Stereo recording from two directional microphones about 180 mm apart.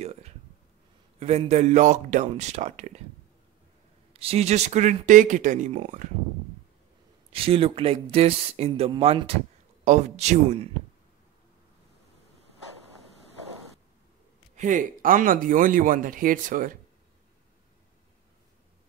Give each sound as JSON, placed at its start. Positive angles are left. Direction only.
{"t": 0.0, "sound": "a sound", "side_deg": -40}
{"t": 1.2, "sound": "speech", "side_deg": -35}
{"t": 4.1, "sound": "speech", "side_deg": -35}
{"t": 7.3, "sound": "speech", "side_deg": -30}
{"t": 14.5, "sound": "speech", "side_deg": -45}